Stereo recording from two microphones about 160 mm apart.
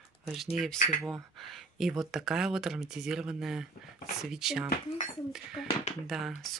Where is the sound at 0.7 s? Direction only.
55° left (ahead or behind).